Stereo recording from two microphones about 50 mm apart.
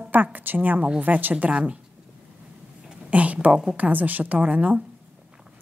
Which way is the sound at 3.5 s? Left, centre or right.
Centre.